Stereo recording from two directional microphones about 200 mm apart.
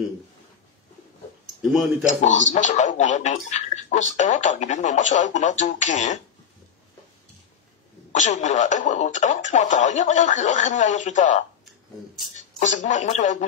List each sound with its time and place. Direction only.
1.6 s speech: centre (ahead or behind)
2.0 s speech: 40° left (ahead or behind)
8.1 s speech: 35° left (ahead or behind)